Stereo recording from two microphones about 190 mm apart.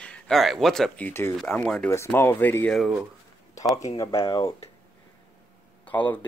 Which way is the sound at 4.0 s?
15° left (ahead or behind).